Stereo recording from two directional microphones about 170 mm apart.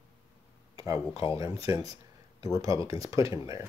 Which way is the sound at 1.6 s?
20° right (ahead or behind).